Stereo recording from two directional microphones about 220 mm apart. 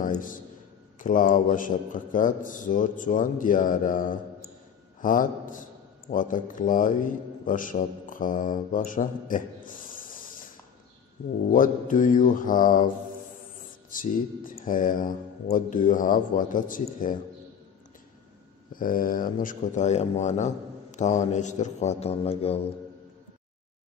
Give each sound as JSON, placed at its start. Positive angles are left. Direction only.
{"t": 0.9, "sound": "a man's voice", "side_deg": 35}
{"t": 11.5, "sound": "speech", "side_deg": 35}
{"t": 18.7, "sound": "speech", "side_deg": 40}